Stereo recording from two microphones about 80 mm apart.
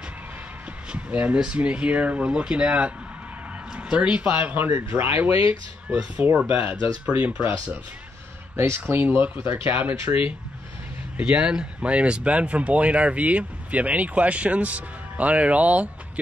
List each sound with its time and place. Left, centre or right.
0.9 s speech: centre
5.9 s speech: centre
8.5 s speech: right